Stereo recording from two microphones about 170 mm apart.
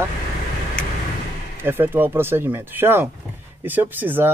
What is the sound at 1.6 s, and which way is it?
Speech, 10° right (ahead or behind).